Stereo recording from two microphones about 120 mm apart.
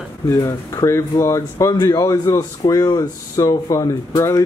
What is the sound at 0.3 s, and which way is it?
Speech, 25° left (ahead or behind).